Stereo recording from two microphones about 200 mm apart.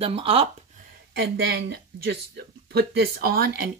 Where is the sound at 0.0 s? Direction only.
30° right (ahead or behind).